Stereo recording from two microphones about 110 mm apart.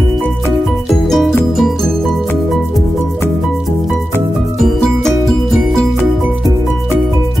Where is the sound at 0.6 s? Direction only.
Centre (ahead or behind).